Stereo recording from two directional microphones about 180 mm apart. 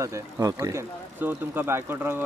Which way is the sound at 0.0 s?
15° right (ahead or behind).